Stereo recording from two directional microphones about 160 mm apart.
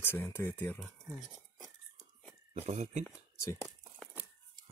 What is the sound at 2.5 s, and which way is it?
Speech, 40° right (ahead or behind).